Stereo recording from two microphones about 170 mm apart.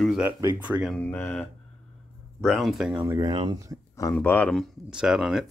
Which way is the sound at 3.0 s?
20° right (ahead or behind).